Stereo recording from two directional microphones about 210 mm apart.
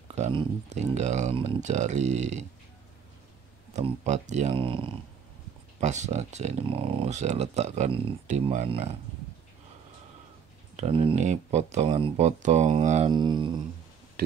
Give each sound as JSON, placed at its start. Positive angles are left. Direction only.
{"t": 0.1, "sound": "speech", "side_deg": -25}
{"t": 3.7, "sound": "speech", "side_deg": -35}
{"t": 10.8, "sound": "speech", "side_deg": -25}
{"t": 13.1, "sound": "humming", "side_deg": -20}